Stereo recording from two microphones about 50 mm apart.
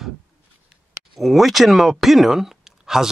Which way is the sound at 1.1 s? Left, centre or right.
Centre.